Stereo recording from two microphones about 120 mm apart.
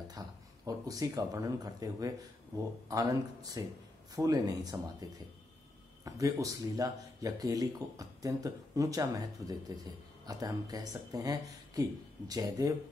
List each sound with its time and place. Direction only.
0.1 s speech: 30° right (ahead or behind)